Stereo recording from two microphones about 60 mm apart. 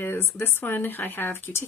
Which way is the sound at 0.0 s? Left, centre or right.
Left.